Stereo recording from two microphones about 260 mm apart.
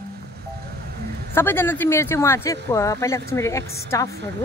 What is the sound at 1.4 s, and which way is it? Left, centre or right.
Speech, centre.